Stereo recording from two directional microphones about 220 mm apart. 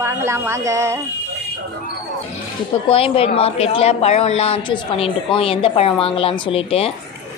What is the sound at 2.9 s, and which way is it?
A woman's voice, 25° left (ahead or behind).